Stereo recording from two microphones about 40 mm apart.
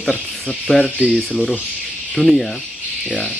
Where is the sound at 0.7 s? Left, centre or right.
Left.